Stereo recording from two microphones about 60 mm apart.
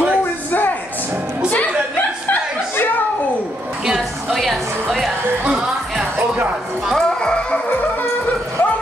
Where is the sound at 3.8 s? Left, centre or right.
Centre.